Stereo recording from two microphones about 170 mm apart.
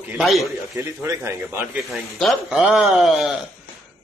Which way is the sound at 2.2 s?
Centre (ahead or behind).